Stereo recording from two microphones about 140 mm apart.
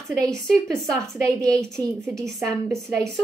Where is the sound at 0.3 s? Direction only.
5° left (ahead or behind).